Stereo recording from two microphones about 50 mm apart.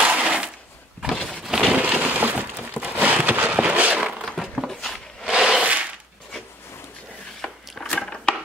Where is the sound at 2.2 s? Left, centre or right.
Right.